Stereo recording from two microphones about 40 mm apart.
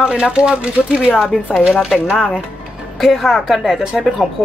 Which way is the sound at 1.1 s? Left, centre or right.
Centre.